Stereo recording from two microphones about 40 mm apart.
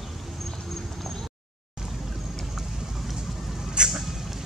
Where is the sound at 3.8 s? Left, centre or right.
Right.